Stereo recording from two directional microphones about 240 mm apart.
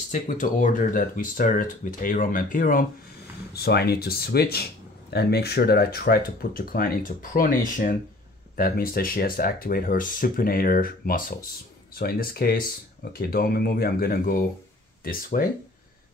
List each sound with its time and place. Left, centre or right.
0.1 s speech: left